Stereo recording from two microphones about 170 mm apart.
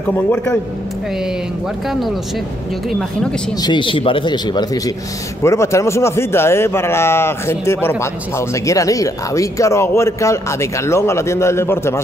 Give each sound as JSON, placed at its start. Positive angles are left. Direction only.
{"t": 0.1, "sound": "speech", "side_deg": 10}
{"t": 1.9, "sound": "a woman's voice", "side_deg": 0}
{"t": 3.6, "sound": "speech", "side_deg": 30}